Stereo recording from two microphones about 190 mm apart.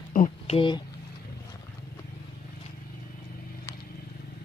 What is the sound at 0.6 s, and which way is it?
Speech, 25° left (ahead or behind).